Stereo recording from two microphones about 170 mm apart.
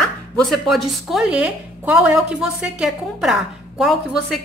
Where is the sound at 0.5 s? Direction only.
Centre (ahead or behind).